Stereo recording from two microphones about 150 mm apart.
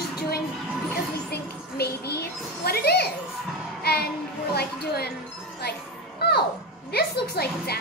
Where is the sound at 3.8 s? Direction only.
90° left.